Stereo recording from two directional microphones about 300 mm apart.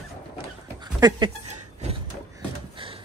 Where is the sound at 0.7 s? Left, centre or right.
Centre.